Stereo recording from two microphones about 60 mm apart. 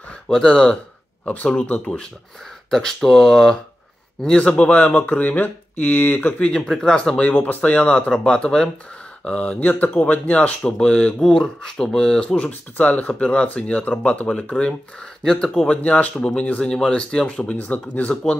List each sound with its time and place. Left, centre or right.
0.3 s speech: centre
2.7 s speech: centre; by 6.4 s left
6.4 s speech: centre
7.2 s speech: left
11.1 s speech: centre
12.4 s speech: left
15.7 s speech: left
17.4 s speech: left